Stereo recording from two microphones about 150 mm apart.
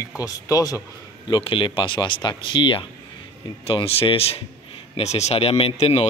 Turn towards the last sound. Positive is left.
turn(degrees=40)  # may be behind; listen again after turning